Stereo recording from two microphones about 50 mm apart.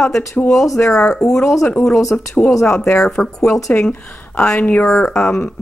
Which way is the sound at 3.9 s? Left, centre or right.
Left.